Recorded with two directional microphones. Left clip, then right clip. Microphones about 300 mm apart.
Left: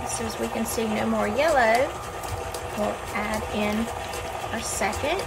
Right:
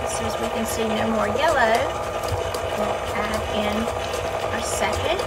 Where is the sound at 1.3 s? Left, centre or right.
Centre.